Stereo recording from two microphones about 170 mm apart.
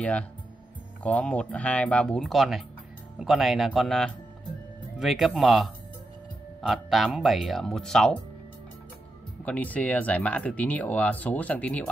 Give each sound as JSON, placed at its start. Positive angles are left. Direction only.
{"t": 0.0, "sound": "speech", "side_deg": 5}
{"t": 9.4, "sound": "speech", "side_deg": 10}